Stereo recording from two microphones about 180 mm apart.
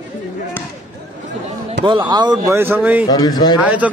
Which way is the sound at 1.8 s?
25° right (ahead or behind).